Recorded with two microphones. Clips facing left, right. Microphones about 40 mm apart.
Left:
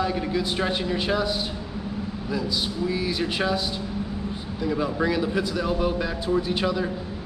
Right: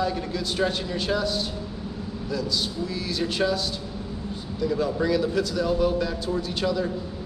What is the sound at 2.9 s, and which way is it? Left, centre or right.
Speech, centre.